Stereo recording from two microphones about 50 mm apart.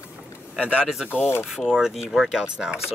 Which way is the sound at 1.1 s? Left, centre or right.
Left.